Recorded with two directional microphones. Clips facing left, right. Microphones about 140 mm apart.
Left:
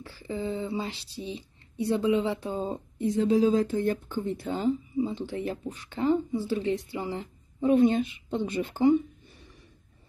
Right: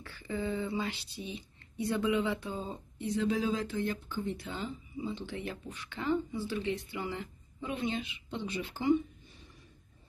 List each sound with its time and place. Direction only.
0.0 s speech: 30° left (ahead or behind); by 8.9 s 50° left (ahead or behind)